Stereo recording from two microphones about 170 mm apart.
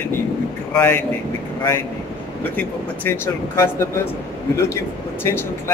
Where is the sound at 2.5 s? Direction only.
10° left (ahead or behind).